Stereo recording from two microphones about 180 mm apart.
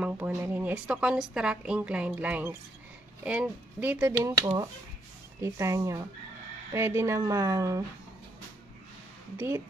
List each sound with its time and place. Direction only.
0.0 s speech: 10° right (ahead or behind)